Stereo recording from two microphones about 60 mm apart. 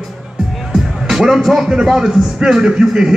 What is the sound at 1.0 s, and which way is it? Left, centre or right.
A man's voice, centre.